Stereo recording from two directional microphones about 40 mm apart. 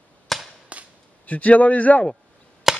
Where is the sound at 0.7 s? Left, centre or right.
Right.